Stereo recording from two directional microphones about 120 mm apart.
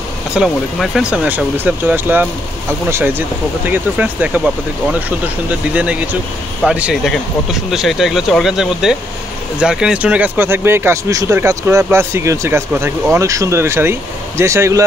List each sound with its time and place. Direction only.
0.3 s speech: 5° right (ahead or behind)
5.8 s speech: 10° right (ahead or behind)